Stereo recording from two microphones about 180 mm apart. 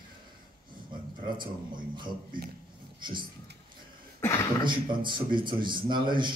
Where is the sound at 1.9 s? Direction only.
25° right (ahead or behind).